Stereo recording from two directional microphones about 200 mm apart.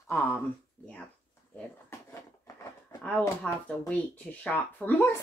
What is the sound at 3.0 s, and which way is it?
Speech, 5° left (ahead or behind).